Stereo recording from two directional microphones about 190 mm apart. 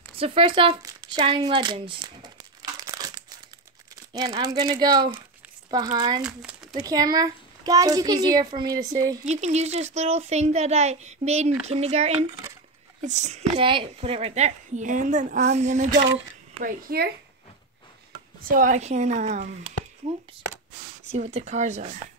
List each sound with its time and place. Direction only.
0.2 s a sound: 30° right (ahead or behind)
4.1 s a child's voice: 20° right (ahead or behind)
9.2 s a child's voice: 35° right (ahead or behind)
16.6 s speech: 50° right (ahead or behind)
18.6 s a child's voice: 40° right (ahead or behind)
21.1 s a child's voice: 35° right (ahead or behind)